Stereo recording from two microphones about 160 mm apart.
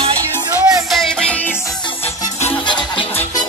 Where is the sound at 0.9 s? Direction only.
Centre (ahead or behind).